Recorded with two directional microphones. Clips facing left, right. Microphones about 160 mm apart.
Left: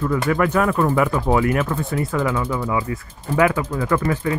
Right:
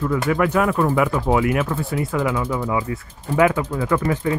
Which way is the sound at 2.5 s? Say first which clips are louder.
Even; 20° right (ahead or behind).